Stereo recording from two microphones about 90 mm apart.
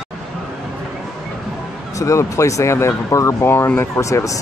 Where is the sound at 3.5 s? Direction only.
25° left (ahead or behind).